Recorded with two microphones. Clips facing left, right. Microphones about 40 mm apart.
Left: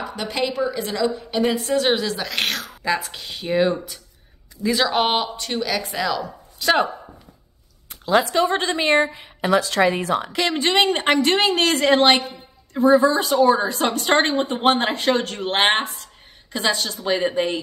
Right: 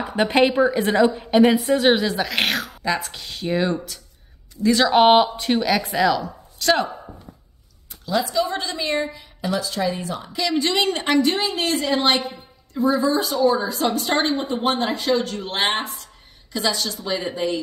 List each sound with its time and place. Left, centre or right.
0.0 s a woman's voice: right
1.5 s speech: centre
2.8 s speech: centre
4.9 s speech: centre
6.6 s speech: centre
8.1 s a woman's voice: left
9.5 s a woman's voice: left
11.1 s a woman's voice: left
11.4 s a woman's voice: left
16.5 s a woman's voice: left